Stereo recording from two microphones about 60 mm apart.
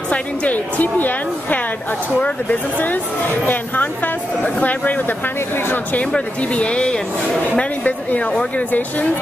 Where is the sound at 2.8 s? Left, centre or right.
Left.